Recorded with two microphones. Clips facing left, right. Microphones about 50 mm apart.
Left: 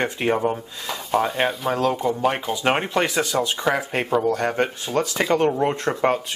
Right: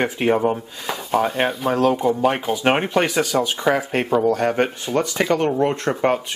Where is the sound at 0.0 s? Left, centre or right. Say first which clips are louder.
Right 3 dB; centre.